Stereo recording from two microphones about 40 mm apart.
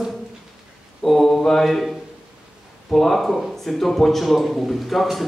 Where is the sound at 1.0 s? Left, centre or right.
Centre.